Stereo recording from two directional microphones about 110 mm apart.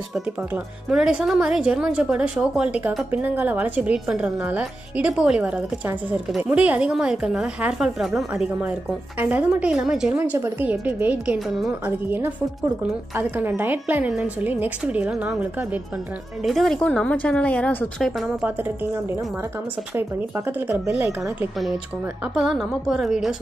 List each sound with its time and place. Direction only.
0.8 s a woman's voice: 5° right (ahead or behind)
13.1 s a woman's voice: 20° right (ahead or behind)
16.4 s a woman's voice: centre (ahead or behind)
20.0 s a woman's voice: 20° right (ahead or behind)
22.3 s a woman's voice: 5° right (ahead or behind)